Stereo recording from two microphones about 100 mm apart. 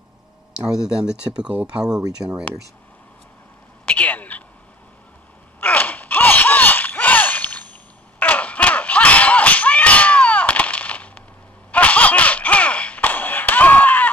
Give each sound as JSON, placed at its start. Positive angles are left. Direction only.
{"t": 0.7, "sound": "speech", "side_deg": -5}
{"t": 3.8, "sound": "telephone", "side_deg": 15}
{"t": 5.6, "sound": "a sound", "side_deg": 20}